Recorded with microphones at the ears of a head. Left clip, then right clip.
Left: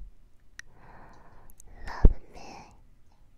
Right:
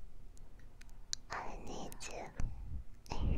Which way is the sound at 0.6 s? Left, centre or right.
Left.